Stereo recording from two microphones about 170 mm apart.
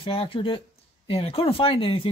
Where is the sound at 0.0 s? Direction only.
30° left (ahead or behind).